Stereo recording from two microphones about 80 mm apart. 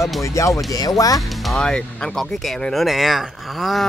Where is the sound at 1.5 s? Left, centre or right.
Centre.